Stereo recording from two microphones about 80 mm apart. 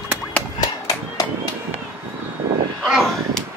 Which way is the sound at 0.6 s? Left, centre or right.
Left.